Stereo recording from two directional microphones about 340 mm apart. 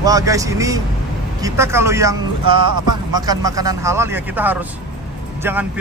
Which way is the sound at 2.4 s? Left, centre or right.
Right.